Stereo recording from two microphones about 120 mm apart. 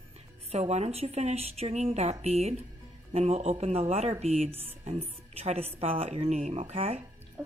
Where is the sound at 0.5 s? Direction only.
65° right (ahead or behind).